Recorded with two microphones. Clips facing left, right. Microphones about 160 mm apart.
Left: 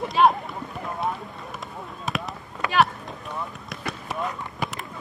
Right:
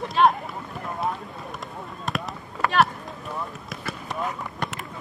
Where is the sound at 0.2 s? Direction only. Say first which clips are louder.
Left 1 dB; 5° left (ahead or behind).